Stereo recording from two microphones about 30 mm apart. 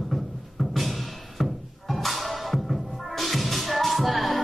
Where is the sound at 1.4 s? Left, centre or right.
Centre.